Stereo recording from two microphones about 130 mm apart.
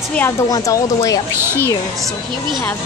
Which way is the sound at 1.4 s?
20° right (ahead or behind).